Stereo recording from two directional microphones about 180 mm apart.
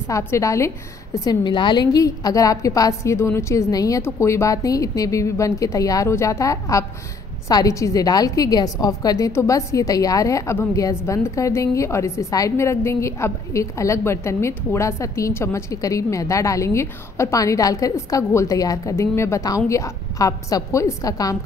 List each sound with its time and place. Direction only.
0.1 s a woman's voice: 15° left (ahead or behind)